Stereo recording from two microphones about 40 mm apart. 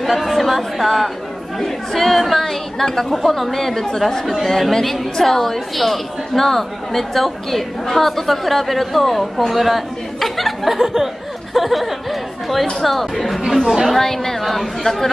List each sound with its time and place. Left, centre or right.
0.0 s a woman's voice: centre